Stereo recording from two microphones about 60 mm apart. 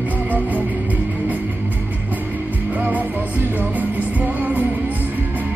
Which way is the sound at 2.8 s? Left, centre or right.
Right.